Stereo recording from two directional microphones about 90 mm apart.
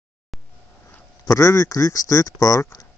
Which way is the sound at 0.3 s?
Centre (ahead or behind).